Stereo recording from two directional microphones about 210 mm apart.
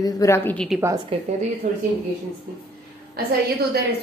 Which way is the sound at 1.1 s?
25° right (ahead or behind).